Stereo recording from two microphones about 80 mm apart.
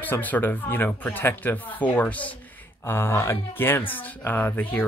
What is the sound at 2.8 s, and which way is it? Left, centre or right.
Speech, left.